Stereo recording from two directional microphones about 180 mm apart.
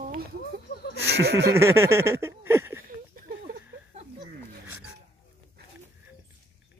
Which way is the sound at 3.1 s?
55° right (ahead or behind).